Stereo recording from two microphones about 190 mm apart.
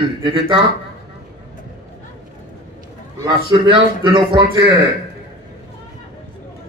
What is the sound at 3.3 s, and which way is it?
Speech, 25° right (ahead or behind).